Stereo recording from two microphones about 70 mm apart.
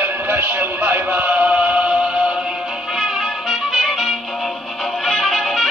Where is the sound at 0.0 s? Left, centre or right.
Right.